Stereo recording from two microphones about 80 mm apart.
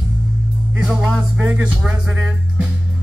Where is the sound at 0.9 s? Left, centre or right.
Centre.